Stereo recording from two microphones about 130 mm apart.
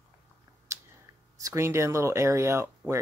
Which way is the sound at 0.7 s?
20° right (ahead or behind).